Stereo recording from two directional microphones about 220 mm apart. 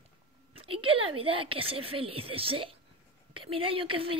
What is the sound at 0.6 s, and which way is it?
A woman's voice, 25° right (ahead or behind).